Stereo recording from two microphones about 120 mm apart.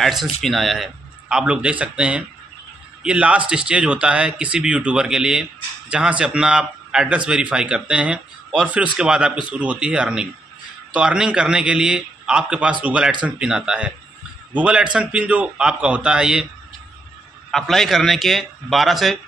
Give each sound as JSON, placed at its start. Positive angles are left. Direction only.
{"t": 0.0, "sound": "a man's voice", "side_deg": 0}
{"t": 17.5, "sound": "a man's voice", "side_deg": 0}